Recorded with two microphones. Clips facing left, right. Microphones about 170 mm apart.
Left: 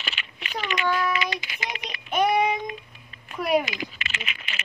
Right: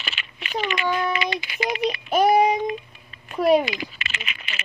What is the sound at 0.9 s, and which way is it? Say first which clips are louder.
Speech: even; 25° right (ahead or behind).